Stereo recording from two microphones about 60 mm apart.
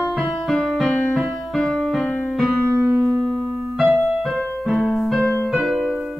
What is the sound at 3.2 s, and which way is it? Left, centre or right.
Keyboard, centre.